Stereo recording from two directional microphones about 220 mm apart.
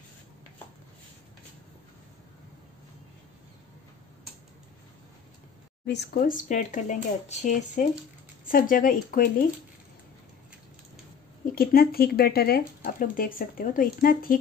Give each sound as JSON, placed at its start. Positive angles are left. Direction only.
{"t": 5.9, "sound": "speech", "side_deg": 45}
{"t": 11.5, "sound": "speech", "side_deg": 40}